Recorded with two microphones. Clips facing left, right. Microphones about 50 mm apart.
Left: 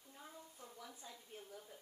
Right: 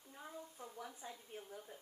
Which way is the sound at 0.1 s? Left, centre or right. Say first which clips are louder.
Right 5 dB; centre.